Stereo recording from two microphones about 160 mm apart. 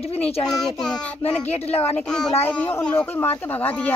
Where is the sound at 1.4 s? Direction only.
40° left (ahead or behind).